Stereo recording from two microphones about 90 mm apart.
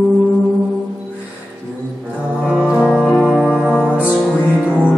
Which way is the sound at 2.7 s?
10° right (ahead or behind).